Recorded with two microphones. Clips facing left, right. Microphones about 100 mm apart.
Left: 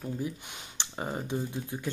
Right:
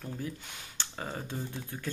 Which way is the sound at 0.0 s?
15° left (ahead or behind).